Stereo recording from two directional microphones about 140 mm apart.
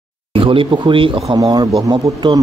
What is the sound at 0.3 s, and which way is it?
Speech, 40° right (ahead or behind).